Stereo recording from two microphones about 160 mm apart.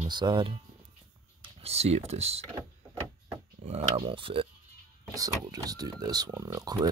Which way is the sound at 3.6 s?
40° right (ahead or behind).